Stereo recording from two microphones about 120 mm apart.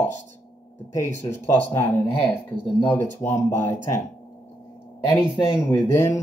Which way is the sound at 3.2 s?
20° left (ahead or behind).